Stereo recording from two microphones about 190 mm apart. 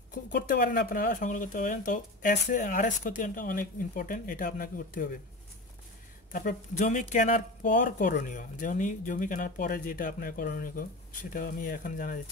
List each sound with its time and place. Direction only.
0.1 s speech: 50° left (ahead or behind)
2.3 s speech: 60° left (ahead or behind)
2.6 s speech: 45° left (ahead or behind)
6.3 s speech: 45° left (ahead or behind)